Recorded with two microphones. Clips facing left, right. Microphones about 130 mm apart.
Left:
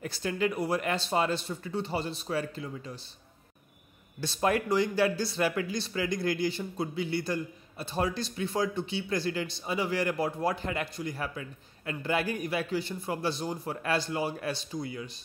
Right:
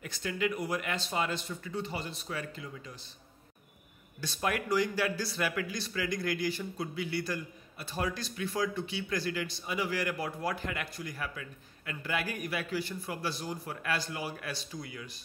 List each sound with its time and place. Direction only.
0.0 s speech: 35° left (ahead or behind)
4.2 s speech: 30° left (ahead or behind)